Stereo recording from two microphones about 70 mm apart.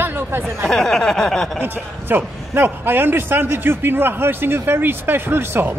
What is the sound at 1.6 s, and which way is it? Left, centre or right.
A man's voice, right.